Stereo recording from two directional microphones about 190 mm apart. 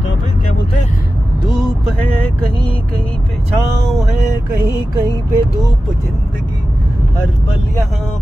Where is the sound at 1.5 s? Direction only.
Centre (ahead or behind).